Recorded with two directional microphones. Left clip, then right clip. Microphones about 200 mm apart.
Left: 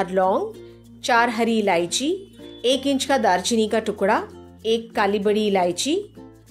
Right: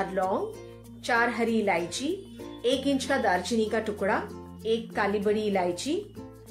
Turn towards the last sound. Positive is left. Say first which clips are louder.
# left 7 dB
turn(degrees=50)  # may be behind; listen again after turning